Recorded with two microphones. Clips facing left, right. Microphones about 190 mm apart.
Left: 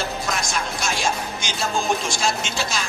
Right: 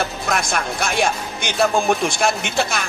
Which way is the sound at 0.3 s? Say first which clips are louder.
Right 4 dB; 60° right (ahead or behind).